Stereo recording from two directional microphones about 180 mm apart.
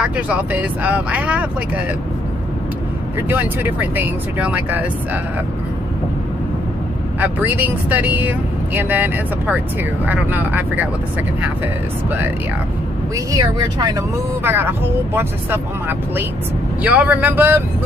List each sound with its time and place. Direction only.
0.0 s speech: 5° right (ahead or behind)
3.2 s speech: 10° right (ahead or behind)
7.2 s speech: 10° right (ahead or behind)
13.1 s speech: 20° right (ahead or behind)
14.4 s speech: 10° right (ahead or behind)